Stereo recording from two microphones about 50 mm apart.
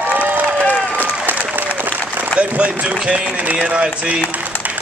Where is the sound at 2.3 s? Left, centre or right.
Right.